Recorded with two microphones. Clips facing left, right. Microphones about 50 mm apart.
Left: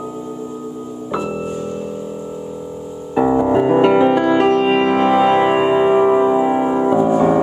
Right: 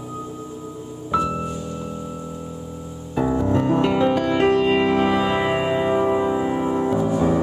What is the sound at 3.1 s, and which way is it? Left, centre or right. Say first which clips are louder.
Music: left 6 dB; left.